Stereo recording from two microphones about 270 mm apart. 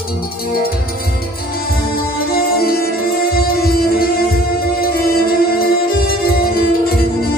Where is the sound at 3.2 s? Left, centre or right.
Left.